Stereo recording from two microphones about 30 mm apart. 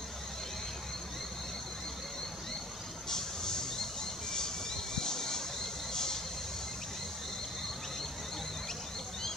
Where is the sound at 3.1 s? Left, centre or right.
Centre.